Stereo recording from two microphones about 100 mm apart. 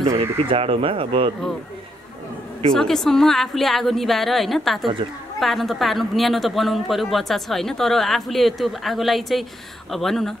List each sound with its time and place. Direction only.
0.0 s speech: 80° right; by 1.3 s 65° right (ahead or behind)
2.7 s a man's voice: 5° left (ahead or behind)